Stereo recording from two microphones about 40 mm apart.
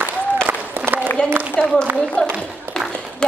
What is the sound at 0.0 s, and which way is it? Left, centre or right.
Applause, right.